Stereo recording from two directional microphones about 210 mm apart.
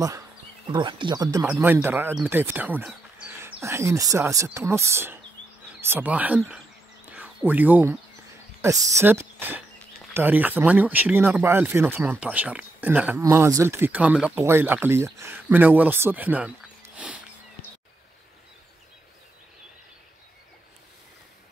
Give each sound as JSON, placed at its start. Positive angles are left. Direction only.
{"t": 0.7, "sound": "speech", "side_deg": -20}
{"t": 7.1, "sound": "a sound", "side_deg": -10}
{"t": 8.5, "sound": "speech", "side_deg": -15}